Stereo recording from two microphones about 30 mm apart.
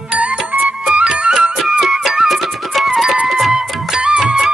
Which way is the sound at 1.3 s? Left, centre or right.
Centre.